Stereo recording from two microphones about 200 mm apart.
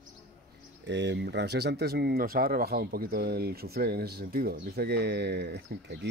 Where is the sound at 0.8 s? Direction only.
60° right (ahead or behind).